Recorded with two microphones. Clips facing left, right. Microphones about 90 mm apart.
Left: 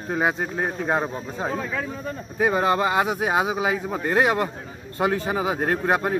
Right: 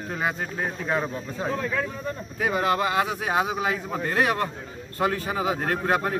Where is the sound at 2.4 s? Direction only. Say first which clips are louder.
Left 3 dB; 25° left (ahead or behind).